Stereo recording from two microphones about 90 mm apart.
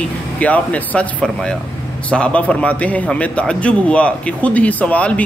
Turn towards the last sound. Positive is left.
turn(degrees=15)  # may be behind; listen again after turning